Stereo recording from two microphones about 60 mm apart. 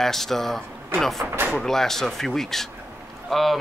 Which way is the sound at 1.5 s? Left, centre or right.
Centre.